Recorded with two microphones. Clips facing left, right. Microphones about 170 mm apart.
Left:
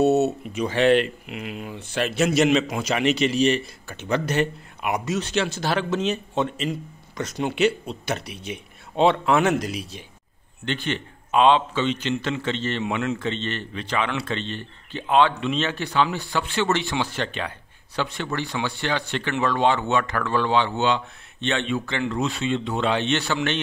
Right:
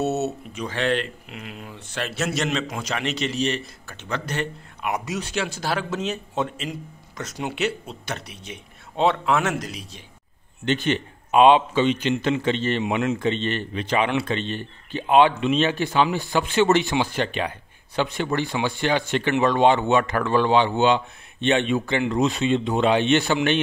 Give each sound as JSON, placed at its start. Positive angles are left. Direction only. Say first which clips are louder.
{"t": 0.0, "sound": "speech", "louder": "left 6 dB", "side_deg": 0}
{"t": 0.6, "sound": "speech", "louder": "left 6 dB", "side_deg": 10}
{"t": 5.0, "sound": "a man's voice", "louder": "left 3 dB", "side_deg": -10}
{"t": 10.6, "sound": "a man's voice", "louder": "right 5 dB", "side_deg": -15}